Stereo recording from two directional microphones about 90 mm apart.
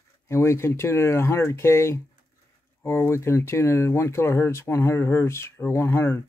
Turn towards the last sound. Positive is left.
turn(degrees=25)  # may be behind; listen again after turning